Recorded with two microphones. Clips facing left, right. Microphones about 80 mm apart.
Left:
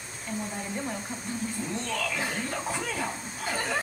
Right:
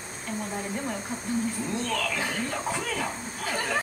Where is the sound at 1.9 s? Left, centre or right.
Centre.